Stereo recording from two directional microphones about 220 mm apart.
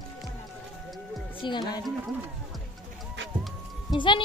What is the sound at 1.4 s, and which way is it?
Speech, 20° left (ahead or behind).